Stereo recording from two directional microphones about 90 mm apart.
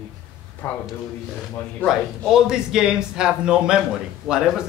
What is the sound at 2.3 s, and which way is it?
A man's voice, 5° right (ahead or behind).